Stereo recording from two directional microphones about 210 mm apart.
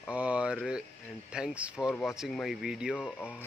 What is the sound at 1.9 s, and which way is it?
Speech, 10° left (ahead or behind).